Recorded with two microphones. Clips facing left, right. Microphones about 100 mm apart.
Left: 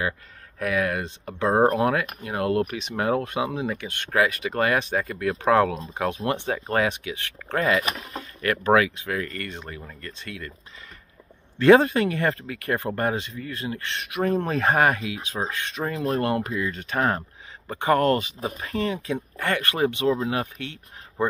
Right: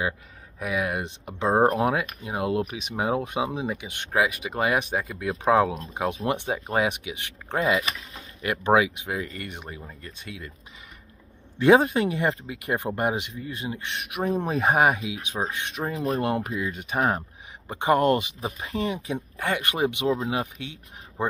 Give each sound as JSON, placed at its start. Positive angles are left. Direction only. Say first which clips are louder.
{"t": 0.6, "sound": "speech", "louder": "left 3 dB", "side_deg": -15}
{"t": 7.8, "sound": "speech", "louder": "left 4 dB", "side_deg": 50}
{"t": 8.4, "sound": "speech", "louder": "left 1 dB", "side_deg": -15}
{"t": 11.5, "sound": "speech", "louder": "left 2 dB", "side_deg": -15}